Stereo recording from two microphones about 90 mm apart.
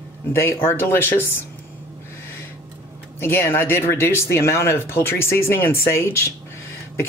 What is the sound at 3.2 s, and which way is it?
Speech, 25° left (ahead or behind).